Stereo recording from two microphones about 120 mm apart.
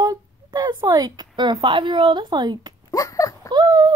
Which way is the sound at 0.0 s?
35° right (ahead or behind).